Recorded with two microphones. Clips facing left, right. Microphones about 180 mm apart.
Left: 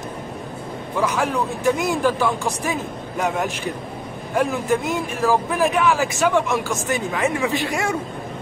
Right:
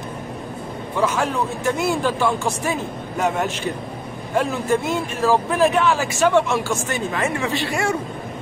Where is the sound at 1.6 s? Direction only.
15° left (ahead or behind).